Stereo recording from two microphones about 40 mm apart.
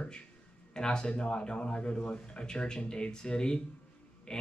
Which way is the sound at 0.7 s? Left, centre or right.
Left.